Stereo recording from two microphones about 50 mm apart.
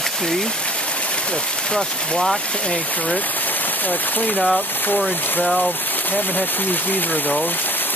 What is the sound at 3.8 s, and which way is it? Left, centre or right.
Speech, left.